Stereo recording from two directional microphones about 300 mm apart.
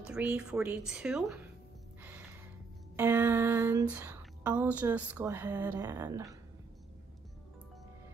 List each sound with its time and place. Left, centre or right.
0.0 s speech: centre
2.0 s music: centre
3.0 s a sound: centre